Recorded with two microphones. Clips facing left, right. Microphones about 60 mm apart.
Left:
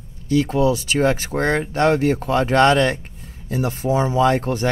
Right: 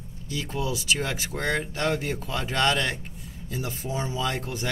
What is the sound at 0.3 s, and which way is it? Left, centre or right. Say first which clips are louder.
Speech: left 13 dB; left.